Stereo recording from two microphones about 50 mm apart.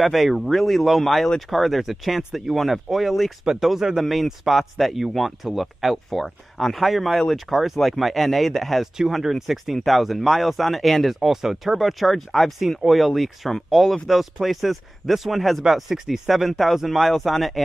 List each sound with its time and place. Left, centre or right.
0.0 s speech: centre
8.9 s speech: centre